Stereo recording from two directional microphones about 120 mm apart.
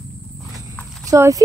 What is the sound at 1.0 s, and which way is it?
Speech, 25° right (ahead or behind).